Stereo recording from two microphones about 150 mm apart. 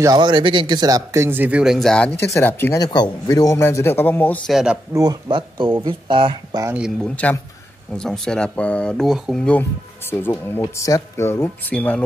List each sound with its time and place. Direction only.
0.0 s speech: 30° right (ahead or behind); by 2.0 s 5° left (ahead or behind)
2.1 s speech: 15° left (ahead or behind)
2.8 s speech: 25° left (ahead or behind)
4.5 s speech: 5° right (ahead or behind)
4.9 s speech: 30° right (ahead or behind)
7.0 s speech: 5° left (ahead or behind)